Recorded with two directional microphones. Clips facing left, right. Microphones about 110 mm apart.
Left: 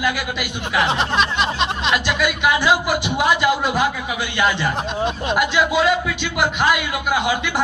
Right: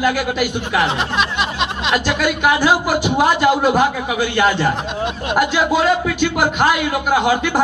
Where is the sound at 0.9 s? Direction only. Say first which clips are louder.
Even; 5° right (ahead or behind).